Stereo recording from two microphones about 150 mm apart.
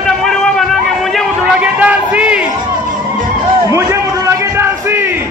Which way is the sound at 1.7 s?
10° right (ahead or behind).